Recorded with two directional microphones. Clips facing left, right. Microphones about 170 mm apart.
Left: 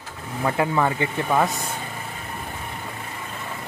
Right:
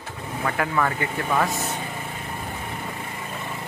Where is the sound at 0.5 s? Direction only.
20° left (ahead or behind).